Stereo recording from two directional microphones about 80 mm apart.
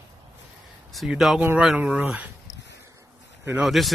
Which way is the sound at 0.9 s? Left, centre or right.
Centre.